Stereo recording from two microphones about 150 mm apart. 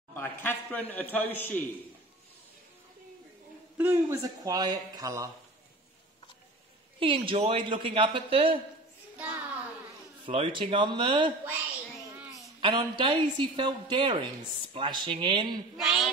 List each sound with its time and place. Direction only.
0.1 s a man's voice: 15° left (ahead or behind)
3.7 s a man's voice: 15° right (ahead or behind)
7.0 s a woman's voice: 35° right (ahead or behind)
9.1 s a sound: 10° right (ahead or behind)
10.2 s a woman's voice: 35° right (ahead or behind)
12.5 s a woman's voice: 30° right (ahead or behind)
15.7 s speech: centre (ahead or behind)